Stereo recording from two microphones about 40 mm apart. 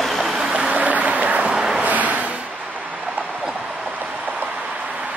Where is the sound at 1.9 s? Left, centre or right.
Right.